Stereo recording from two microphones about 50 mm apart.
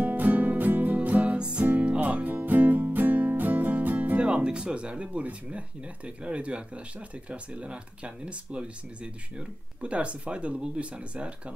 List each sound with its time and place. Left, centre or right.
0.0 s music: right
1.4 s music: right
1.7 s music: right
4.2 s speech: right